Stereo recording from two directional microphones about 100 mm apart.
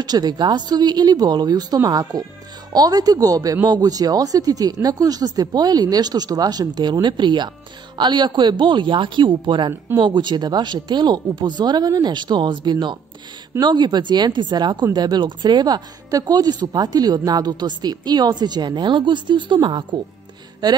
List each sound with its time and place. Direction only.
0.0 s speech: 45° right (ahead or behind)